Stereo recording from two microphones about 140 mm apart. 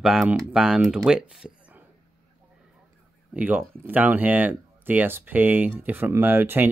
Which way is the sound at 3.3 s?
10° right (ahead or behind).